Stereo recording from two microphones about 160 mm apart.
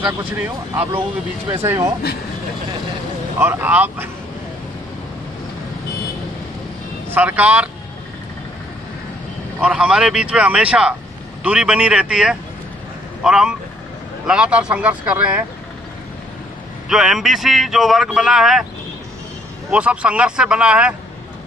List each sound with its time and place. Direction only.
1.6 s speech: 15° right (ahead or behind)
3.3 s speech: 15° right (ahead or behind)
7.1 s speech: 10° right (ahead or behind)
9.6 s speech: 5° right (ahead or behind)
16.9 s speech: centre (ahead or behind)
19.7 s speech: 10° right (ahead or behind)